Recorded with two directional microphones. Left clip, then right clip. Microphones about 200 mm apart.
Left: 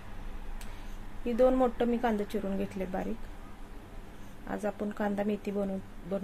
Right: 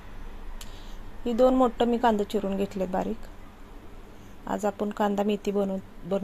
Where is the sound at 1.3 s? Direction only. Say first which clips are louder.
Right 4 dB; 20° right (ahead or behind).